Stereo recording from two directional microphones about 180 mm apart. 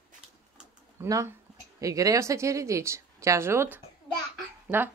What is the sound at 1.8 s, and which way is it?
Speech, 20° right (ahead or behind).